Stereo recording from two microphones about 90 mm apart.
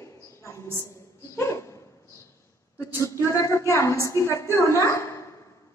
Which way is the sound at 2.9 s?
35° left (ahead or behind).